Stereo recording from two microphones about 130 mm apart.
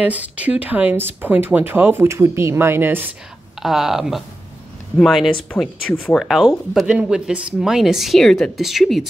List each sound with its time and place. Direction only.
0.0 s speech: 10° right (ahead or behind)
3.6 s speech: 5° right (ahead or behind)